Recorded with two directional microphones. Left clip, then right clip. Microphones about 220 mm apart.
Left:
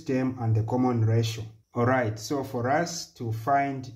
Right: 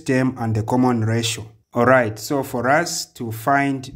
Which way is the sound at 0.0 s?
40° right (ahead or behind).